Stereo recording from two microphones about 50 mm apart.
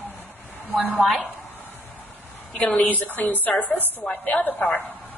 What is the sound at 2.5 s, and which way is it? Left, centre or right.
A woman's voice, left.